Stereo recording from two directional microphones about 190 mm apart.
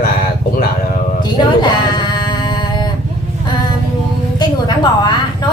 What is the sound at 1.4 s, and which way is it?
Sheep, 20° left (ahead or behind).